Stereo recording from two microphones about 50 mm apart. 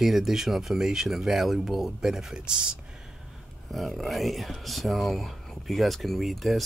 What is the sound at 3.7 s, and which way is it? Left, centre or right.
Speech, centre.